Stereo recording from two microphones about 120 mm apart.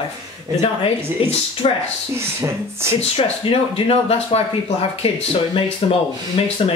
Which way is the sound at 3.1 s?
50° left (ahead or behind).